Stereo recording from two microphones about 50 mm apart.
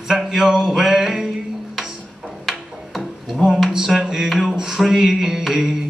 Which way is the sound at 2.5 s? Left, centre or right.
Centre.